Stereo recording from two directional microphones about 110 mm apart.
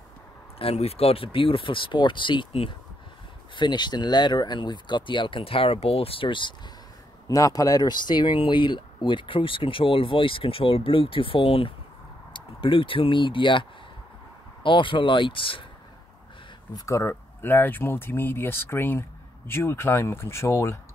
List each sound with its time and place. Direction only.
0.6 s speech: 65° left (ahead or behind)
3.5 s speech: 45° left (ahead or behind)
7.2 s speech: 30° left (ahead or behind); by 15.6 s 50° left (ahead or behind)
16.7 s speech: 30° left (ahead or behind)
17.1 s speech: 15° left (ahead or behind)